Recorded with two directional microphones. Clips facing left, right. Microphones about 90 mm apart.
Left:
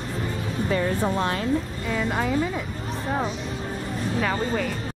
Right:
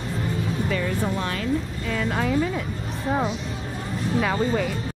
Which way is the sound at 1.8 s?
5° left (ahead or behind).